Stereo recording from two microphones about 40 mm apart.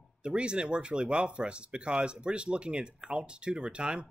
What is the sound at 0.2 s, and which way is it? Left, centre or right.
Speech, right.